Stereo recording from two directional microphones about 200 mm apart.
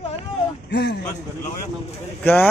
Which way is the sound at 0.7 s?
55° left (ahead or behind).